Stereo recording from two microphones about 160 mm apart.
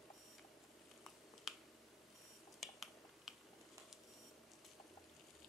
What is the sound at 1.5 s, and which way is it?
Finger snapping, centre (ahead or behind).